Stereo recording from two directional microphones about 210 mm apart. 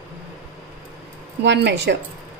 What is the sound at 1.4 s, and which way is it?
Speech, 55° right (ahead or behind).